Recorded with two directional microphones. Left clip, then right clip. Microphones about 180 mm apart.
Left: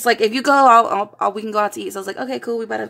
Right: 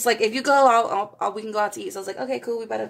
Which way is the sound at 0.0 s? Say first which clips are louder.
Left 5 dB; 30° left (ahead or behind).